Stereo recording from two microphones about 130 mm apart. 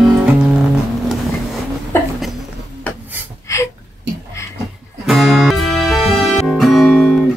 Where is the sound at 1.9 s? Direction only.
20° left (ahead or behind).